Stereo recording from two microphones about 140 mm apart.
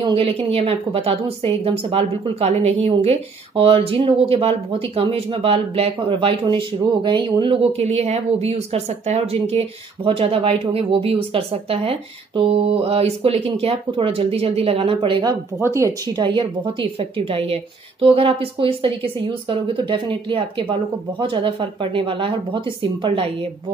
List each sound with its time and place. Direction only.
0.0 s a woman's voice: 40° right (ahead or behind)
15.6 s speech: 20° right (ahead or behind)
16.2 s a woman's voice: 35° right (ahead or behind)